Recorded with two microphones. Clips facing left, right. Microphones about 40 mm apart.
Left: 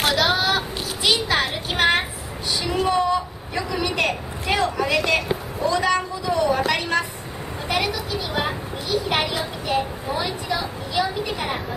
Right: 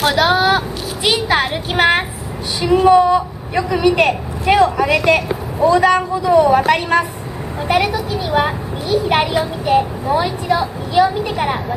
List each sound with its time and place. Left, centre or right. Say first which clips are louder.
0.0 s a man's voice: right 6 dB; right
0.3 s a sound: right 7 dB; right
1.0 s a woman's voice: right 5 dB; right